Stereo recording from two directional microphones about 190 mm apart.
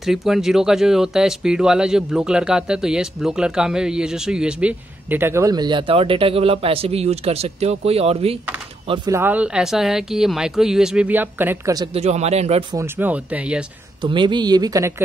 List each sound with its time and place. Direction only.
0.0 s speech: centre (ahead or behind); by 9.1 s 25° right (ahead or behind)
9.1 s speech: 10° right (ahead or behind)
11.9 s speech: 35° right (ahead or behind)
12.7 s speech: 10° right (ahead or behind)
14.0 s speech: 25° right (ahead or behind)